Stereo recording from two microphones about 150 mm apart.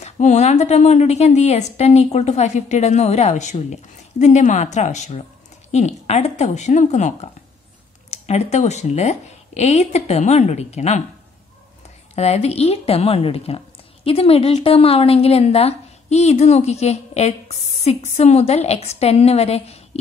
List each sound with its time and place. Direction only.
0.0 s a woman's voice: 50° left (ahead or behind)
12.2 s a woman's voice: 45° left (ahead or behind)